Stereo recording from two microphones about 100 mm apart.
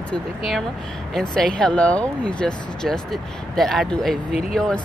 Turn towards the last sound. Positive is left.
turn(degrees=5)  # may be behind; listen again after turning